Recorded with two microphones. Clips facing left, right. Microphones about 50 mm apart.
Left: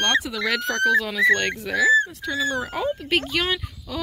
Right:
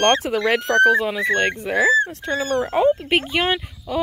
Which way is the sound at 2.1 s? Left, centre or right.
Right.